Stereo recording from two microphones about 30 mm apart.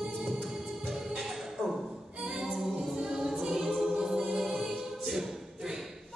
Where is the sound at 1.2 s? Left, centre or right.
Centre.